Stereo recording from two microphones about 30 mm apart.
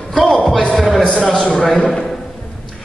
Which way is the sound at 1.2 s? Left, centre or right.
Left.